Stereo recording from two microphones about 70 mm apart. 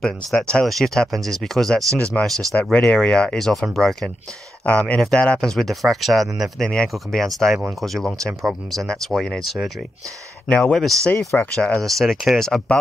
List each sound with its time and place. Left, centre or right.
0.0 s speech: centre
2.0 s speech: left
4.6 s speech: centre
11.8 s speech: centre